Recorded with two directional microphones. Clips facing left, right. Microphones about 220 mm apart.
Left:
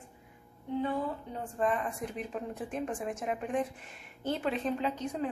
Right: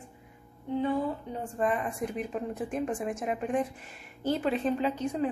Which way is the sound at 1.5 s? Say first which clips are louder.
Right 1 dB; 10° right (ahead or behind).